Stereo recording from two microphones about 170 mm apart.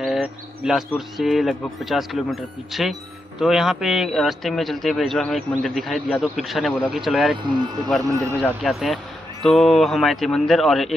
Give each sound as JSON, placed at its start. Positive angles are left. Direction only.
{"t": 0.0, "sound": "a sound", "side_deg": -5}
{"t": 0.9, "sound": "speech", "side_deg": 0}
{"t": 7.4, "sound": "speech", "side_deg": -25}
{"t": 8.4, "sound": "speech", "side_deg": 5}